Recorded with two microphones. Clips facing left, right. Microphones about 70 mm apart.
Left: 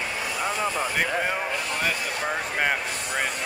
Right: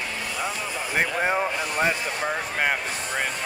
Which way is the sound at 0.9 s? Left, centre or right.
Right.